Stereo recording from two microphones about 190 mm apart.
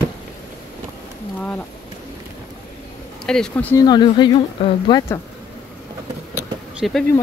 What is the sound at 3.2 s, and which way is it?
Speech, 5° left (ahead or behind).